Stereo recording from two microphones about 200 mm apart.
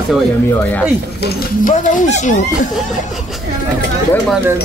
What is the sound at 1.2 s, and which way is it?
Speech, 40° left (ahead or behind).